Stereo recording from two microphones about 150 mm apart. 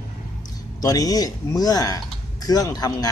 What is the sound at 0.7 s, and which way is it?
Speech, 25° left (ahead or behind).